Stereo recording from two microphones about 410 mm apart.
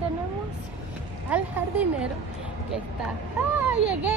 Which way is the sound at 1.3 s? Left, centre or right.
Centre.